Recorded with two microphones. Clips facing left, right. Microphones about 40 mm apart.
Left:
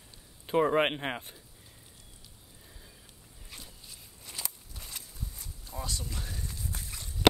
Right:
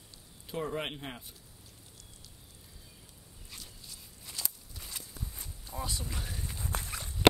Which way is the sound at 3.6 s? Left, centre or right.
Centre.